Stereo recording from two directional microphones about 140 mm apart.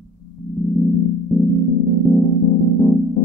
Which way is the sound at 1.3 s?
Centre (ahead or behind).